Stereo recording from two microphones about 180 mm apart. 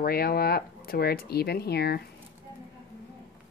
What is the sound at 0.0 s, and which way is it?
Speech, 55° left (ahead or behind).